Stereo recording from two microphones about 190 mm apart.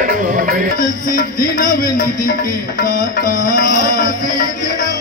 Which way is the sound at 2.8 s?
45° left (ahead or behind).